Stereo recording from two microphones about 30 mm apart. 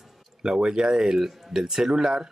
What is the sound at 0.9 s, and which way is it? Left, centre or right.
Speech, centre.